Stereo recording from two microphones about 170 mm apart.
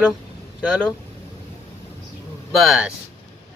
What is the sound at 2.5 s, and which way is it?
Speech, centre (ahead or behind).